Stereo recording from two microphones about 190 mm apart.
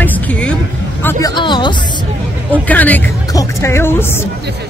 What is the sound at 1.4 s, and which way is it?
Speech, 25° left (ahead or behind).